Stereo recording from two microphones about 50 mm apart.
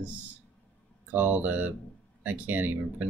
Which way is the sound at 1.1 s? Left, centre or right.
Right.